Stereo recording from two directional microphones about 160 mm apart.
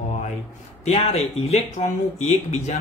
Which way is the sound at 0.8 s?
40° left (ahead or behind).